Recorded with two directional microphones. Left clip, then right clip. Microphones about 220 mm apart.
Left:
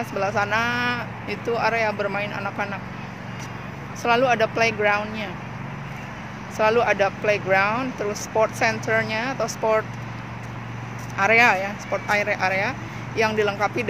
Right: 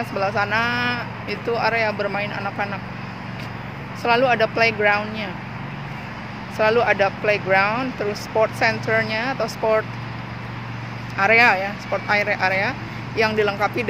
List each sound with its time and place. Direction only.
0.2 s speech: 15° left (ahead or behind)
4.0 s speech: 15° left (ahead or behind)
6.6 s speech: 10° left (ahead or behind)
11.1 s speech: 10° left (ahead or behind)